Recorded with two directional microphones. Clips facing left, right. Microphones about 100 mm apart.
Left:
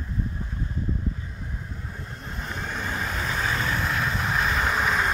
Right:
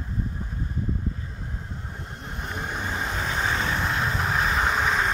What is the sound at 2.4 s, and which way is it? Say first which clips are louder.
Vehicle: right 1 dB; 15° right (ahead or behind).